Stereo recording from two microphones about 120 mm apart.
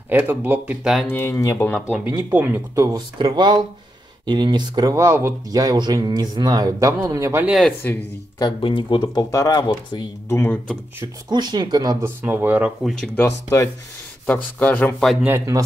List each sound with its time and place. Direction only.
0.1 s speech: 15° right (ahead or behind)
1.0 s speech: 20° left (ahead or behind)
2.0 s speech: 20° right (ahead or behind)
3.2 s speech: 40° right (ahead or behind); by 7.4 s 25° right (ahead or behind)
8.4 s speech: 45° left (ahead or behind)
10.2 s speech: 20° left (ahead or behind)
11.2 s speech: 35° right (ahead or behind)
12.0 s speech: 20° right (ahead or behind)
13.1 s speech: 15° left (ahead or behind)
15.2 s speech: 25° right (ahead or behind)